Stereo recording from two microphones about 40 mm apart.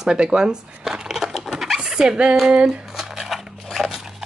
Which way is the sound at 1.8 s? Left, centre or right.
Right.